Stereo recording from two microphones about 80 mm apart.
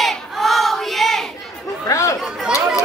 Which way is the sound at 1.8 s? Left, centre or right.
Left.